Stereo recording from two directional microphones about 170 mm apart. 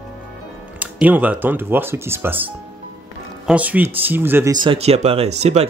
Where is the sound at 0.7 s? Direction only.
10° right (ahead or behind).